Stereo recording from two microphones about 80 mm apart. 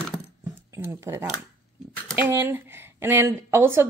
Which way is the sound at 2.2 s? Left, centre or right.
Right.